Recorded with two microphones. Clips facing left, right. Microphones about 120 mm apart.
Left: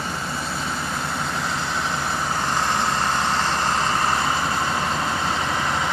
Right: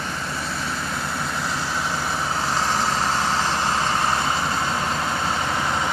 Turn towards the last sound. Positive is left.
turn(degrees=-10)  # may be behind; listen again after turning